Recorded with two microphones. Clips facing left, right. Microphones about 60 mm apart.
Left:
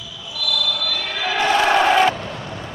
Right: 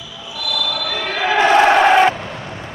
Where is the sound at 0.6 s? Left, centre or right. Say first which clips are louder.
Right 4 dB; right.